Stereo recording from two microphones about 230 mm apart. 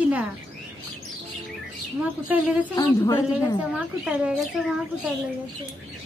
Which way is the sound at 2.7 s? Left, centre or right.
Centre.